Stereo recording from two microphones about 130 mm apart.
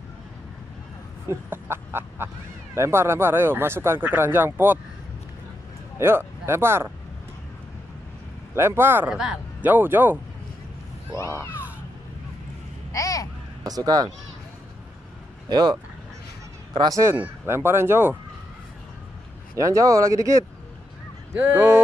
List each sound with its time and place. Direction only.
1.3 s speech: 20° right (ahead or behind)
5.9 s speech: 20° right (ahead or behind)
8.5 s speech: 20° right (ahead or behind)
9.1 s speech: 5° right (ahead or behind)
11.1 s speech: 25° left (ahead or behind)
12.9 s a sound: 25° left (ahead or behind)
13.7 s speech: 30° right (ahead or behind)
15.5 s speech: 30° right (ahead or behind)
19.5 s speech: 25° right (ahead or behind)